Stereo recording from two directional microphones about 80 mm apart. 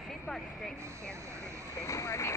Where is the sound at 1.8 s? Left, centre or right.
Left.